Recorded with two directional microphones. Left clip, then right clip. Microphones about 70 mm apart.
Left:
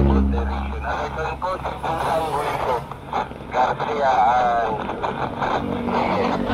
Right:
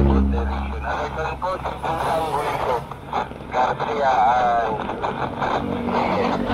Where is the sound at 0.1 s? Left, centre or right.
Left.